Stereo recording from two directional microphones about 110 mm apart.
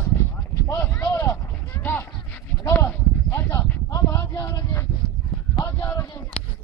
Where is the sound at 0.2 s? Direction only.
20° left (ahead or behind).